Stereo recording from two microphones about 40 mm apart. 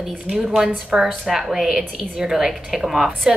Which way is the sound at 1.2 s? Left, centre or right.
Centre.